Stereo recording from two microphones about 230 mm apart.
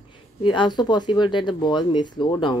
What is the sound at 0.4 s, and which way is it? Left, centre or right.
Speech, centre.